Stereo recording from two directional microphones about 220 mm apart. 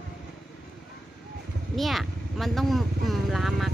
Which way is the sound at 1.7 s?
Centre (ahead or behind).